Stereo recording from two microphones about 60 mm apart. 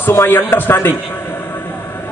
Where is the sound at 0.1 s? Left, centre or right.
Left.